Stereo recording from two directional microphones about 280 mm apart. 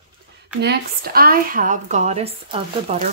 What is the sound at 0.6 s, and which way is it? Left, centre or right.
Speech, right.